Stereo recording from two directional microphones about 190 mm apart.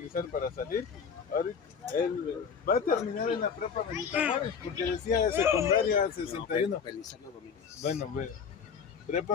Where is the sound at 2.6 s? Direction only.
50° left (ahead or behind).